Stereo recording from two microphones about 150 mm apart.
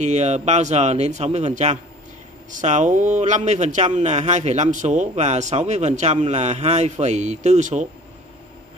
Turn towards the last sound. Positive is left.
turn(degrees=-50)  # may be behind; listen again after turning